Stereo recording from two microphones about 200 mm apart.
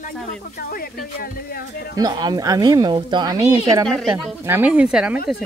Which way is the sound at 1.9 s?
20° right (ahead or behind).